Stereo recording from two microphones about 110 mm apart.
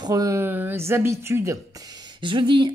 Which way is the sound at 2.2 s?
45° right (ahead or behind).